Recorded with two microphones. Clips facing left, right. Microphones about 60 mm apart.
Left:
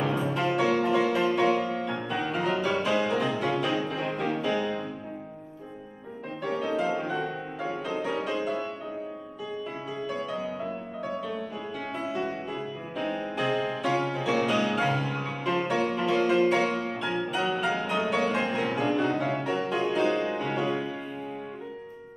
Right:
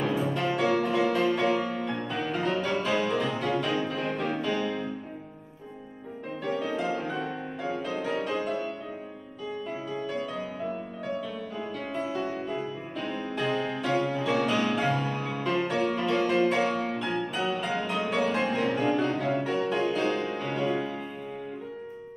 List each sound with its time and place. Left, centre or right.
0.0 s music: centre
6.4 s music: centre
10.0 s music: centre